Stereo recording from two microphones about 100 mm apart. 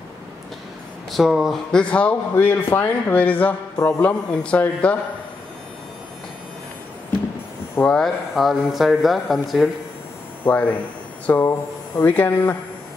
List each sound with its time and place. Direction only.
1.1 s speech: 5° right (ahead or behind)
1.7 s speech: 10° left (ahead or behind)
7.8 s speech: 5° left (ahead or behind)
10.4 s speech: 15° left (ahead or behind)